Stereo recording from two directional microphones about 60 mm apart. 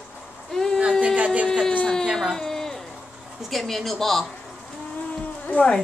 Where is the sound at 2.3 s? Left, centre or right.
Centre.